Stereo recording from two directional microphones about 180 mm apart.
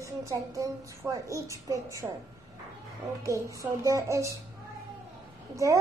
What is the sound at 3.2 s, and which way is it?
A child's voice, 20° right (ahead or behind).